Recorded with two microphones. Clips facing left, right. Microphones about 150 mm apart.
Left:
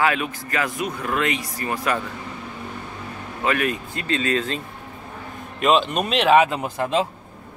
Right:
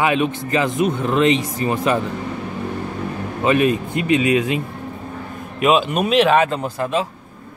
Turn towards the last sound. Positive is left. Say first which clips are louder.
# right 1 dB
turn(degrees=20)  # may be behind; listen again after turning